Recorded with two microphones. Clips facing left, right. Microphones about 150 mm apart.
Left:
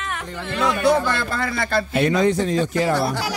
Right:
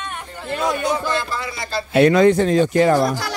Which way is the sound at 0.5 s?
65° left (ahead or behind).